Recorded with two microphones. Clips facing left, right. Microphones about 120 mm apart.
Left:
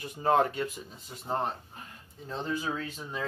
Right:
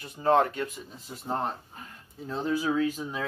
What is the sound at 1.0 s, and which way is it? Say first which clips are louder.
Speech: right 1 dB; centre (ahead or behind).